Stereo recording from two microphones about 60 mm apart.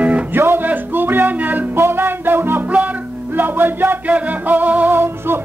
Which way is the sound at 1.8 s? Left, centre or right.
Right.